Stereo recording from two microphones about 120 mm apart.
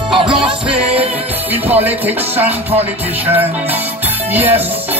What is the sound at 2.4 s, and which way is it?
Music, 60° right (ahead or behind).